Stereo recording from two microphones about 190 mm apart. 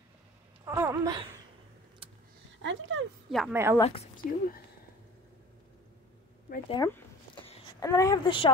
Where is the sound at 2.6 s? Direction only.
85° right.